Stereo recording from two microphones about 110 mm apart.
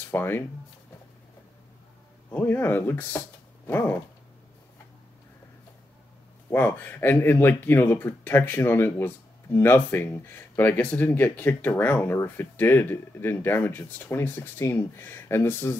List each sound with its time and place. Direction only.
0.1 s speech: 20° left (ahead or behind)
2.3 s speech: 20° left (ahead or behind)
6.5 s speech: 15° left (ahead or behind)